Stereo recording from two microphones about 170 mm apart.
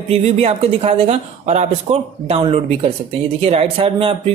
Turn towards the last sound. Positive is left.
turn(degrees=-35)  # may be behind; listen again after turning